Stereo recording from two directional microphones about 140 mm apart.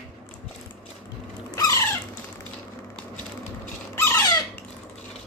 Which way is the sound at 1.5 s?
25° left (ahead or behind).